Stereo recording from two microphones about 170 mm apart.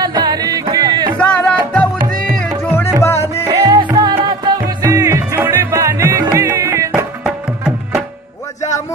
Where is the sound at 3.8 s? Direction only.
25° right (ahead or behind).